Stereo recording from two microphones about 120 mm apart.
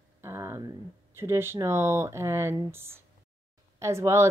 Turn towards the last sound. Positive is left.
turn(degrees=-25)  # may be behind; listen again after turning